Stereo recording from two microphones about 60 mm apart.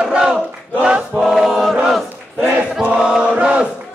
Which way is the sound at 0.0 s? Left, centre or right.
Centre.